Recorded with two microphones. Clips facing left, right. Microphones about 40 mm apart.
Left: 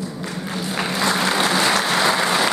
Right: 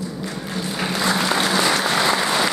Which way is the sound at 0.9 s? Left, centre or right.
Centre.